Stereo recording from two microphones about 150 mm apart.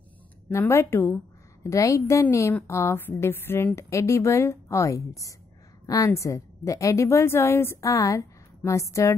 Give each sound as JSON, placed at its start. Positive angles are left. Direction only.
{"t": 0.5, "sound": "a woman's voice", "side_deg": 15}